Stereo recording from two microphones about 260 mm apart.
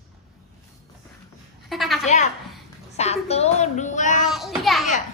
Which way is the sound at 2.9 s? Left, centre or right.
Left.